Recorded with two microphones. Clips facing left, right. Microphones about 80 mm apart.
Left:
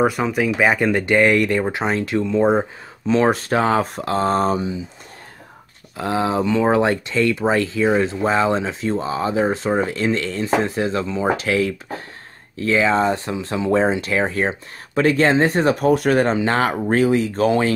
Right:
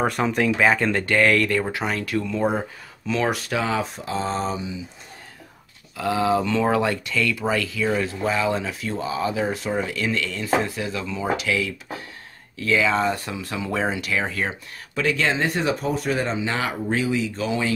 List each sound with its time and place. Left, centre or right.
0.0 s speech: centre; by 4.0 s left
4.0 s speech: left
5.9 s speech: left
6.4 s speech: left
15.7 s speech: left